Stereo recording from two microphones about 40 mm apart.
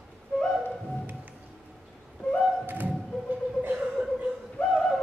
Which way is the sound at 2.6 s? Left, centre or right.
Right.